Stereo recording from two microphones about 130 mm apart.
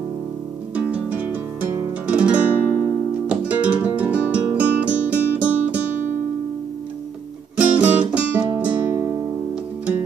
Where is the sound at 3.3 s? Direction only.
10° right (ahead or behind).